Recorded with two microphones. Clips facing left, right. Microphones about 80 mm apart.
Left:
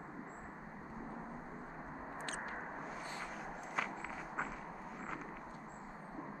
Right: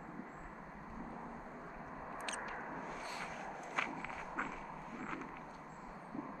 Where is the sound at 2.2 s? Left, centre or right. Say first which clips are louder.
Even; left.